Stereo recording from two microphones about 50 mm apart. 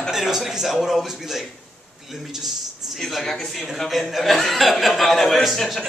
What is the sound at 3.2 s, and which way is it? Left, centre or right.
A man's voice, centre.